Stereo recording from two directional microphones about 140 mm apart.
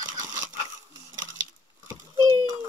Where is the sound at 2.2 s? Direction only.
30° right (ahead or behind).